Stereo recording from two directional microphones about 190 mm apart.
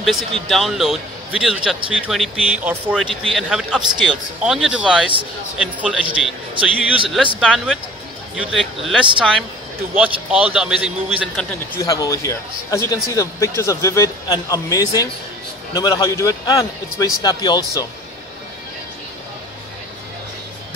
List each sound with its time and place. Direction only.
0.0 s a man's voice: centre (ahead or behind)
11.3 s a man's voice: 15° left (ahead or behind)